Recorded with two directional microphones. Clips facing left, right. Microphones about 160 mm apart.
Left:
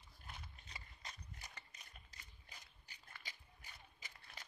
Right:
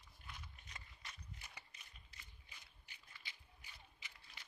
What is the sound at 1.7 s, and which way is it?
Ratchet, 40° left (ahead or behind).